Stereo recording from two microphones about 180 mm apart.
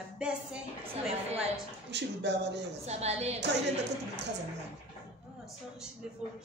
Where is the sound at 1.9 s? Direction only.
70° right (ahead or behind).